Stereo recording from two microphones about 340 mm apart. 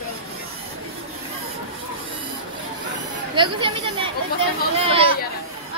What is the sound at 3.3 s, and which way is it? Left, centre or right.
Speech, centre.